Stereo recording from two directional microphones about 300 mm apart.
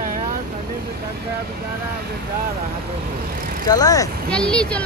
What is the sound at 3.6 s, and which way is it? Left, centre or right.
Speech, centre.